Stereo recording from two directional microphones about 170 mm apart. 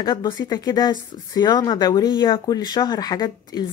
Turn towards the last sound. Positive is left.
turn(degrees=25)  # may be behind; listen again after turning